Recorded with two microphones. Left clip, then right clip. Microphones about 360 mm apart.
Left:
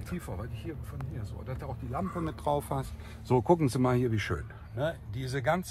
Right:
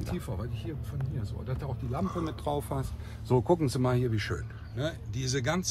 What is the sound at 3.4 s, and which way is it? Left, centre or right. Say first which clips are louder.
Speech: left 1 dB; left.